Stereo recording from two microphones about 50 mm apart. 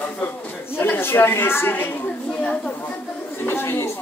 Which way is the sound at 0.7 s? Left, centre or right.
Left.